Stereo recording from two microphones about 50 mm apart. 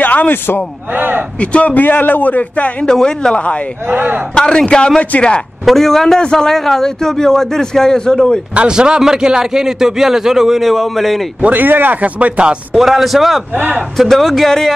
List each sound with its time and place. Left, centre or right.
0.0 s a sound: left
0.9 s a sound: right
1.4 s a man's voice: left
2.9 s a man's voice: centre
3.8 s speech: right
4.4 s a man's voice: centre
5.7 s a man's voice: centre
8.5 s a man's voice: centre
10.7 s speech: centre
11.4 s speech: right
12.7 s speech: centre
13.5 s speech: right
13.9 s speech: centre